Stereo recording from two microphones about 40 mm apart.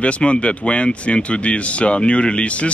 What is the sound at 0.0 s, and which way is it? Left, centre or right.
Speech, left.